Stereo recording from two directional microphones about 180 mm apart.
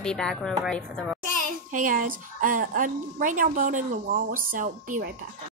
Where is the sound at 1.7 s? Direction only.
50° right (ahead or behind).